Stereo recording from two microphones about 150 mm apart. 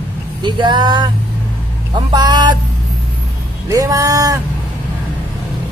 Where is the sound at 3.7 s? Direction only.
20° right (ahead or behind).